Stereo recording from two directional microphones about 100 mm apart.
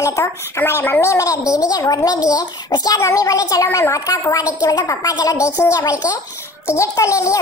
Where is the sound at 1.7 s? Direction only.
40° left (ahead or behind).